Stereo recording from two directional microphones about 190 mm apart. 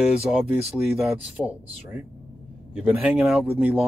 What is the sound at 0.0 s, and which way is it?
Speech, 5° right (ahead or behind).